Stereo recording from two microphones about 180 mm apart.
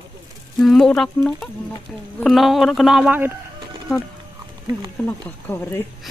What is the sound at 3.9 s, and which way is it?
Speech, centre (ahead or behind).